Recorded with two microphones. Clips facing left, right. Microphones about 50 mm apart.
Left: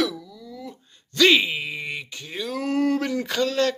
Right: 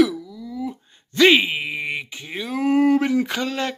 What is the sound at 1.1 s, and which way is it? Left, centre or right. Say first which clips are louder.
Speech: right 3 dB; right.